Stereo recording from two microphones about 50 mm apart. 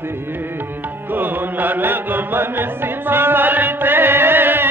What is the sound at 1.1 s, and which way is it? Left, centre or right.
Music, right.